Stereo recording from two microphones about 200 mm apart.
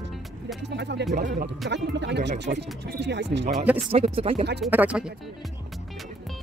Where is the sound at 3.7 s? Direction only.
30° right (ahead or behind).